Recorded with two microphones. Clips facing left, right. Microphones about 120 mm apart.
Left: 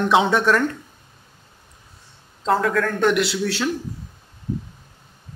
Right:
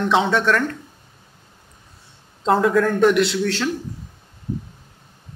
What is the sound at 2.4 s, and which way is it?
Speech, 20° right (ahead or behind).